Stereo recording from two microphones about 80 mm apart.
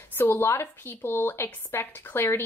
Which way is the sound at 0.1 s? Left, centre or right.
Left.